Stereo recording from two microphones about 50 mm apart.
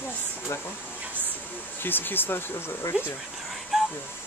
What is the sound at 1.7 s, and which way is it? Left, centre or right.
Speech, left.